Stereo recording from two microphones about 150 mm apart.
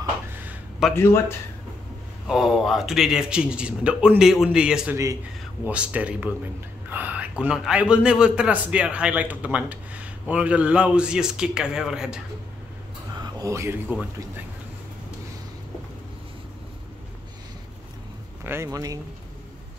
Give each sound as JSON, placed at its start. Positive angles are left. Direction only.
{"t": 0.3, "sound": "a sound", "side_deg": -10}
{"t": 0.9, "sound": "speech", "side_deg": 15}
{"t": 2.2, "sound": "a man's voice", "side_deg": -5}
{"t": 13.2, "sound": "speech", "side_deg": -20}
{"t": 18.4, "sound": "speech", "side_deg": -15}